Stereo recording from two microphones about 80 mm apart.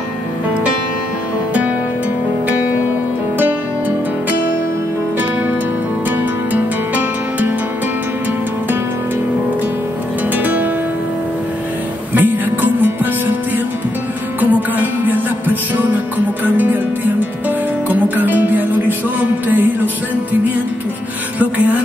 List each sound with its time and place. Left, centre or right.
6.0 s music: centre
10.3 s music: right
12.1 s music: right
14.4 s music: right
21.4 s a sound: centre